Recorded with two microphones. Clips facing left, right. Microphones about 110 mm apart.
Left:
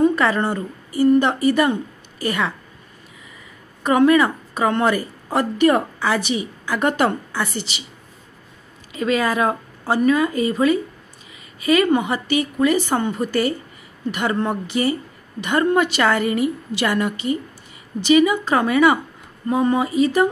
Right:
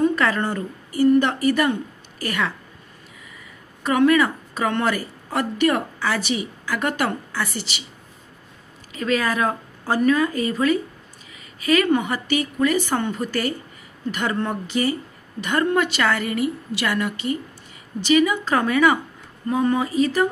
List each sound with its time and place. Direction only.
0.0 s a woman's voice: 20° left (ahead or behind)
3.8 s a woman's voice: 25° left (ahead or behind)
9.0 s a woman's voice: 15° left (ahead or behind)
11.7 s a woman's voice: 20° left (ahead or behind)